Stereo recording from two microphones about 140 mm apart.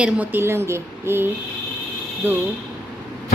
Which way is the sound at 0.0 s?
10° right (ahead or behind).